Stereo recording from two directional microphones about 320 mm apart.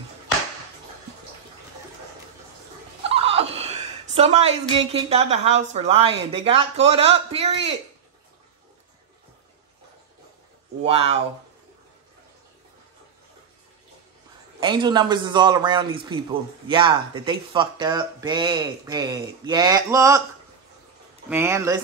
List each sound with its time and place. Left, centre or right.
3.0 s a sound: centre
6.4 s speech: centre
10.8 s speech: centre
14.6 s a man's voice: centre
21.3 s a man's voice: centre